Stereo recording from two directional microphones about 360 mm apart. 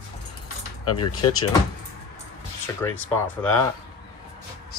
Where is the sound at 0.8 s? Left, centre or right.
Left.